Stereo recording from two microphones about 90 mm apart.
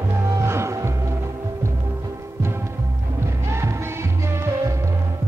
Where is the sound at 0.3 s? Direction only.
35° right (ahead or behind).